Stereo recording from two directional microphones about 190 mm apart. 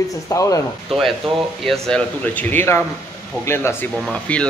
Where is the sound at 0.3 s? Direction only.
15° left (ahead or behind).